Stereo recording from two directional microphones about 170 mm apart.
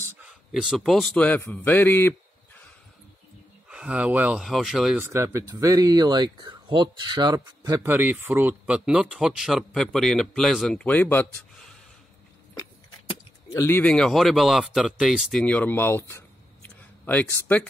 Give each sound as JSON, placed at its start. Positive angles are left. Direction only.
{"t": 0.2, "sound": "a man's voice", "side_deg": 0}
{"t": 3.6, "sound": "speech", "side_deg": -5}
{"t": 5.0, "sound": "speech", "side_deg": -15}
{"t": 13.1, "sound": "speech", "side_deg": 20}